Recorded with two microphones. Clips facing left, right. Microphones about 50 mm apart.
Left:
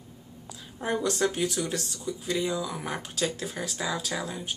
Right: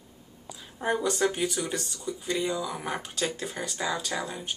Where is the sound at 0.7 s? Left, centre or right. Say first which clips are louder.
Right 1 dB; centre.